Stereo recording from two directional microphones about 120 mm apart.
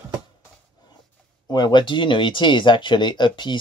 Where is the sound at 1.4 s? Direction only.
35° left (ahead or behind).